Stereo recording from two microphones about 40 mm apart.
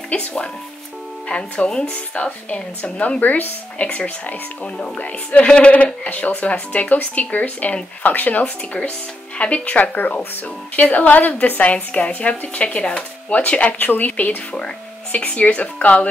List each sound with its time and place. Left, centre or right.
1.6 s speech: left
3.8 s speech: left
9.4 s speech: left
11.7 s speech: left
13.3 s speech: left